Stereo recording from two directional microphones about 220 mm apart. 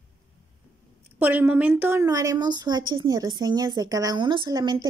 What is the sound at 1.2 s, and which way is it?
Speech, 10° right (ahead or behind).